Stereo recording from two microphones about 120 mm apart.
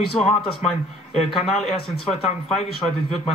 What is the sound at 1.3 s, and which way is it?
A man's voice, centre (ahead or behind).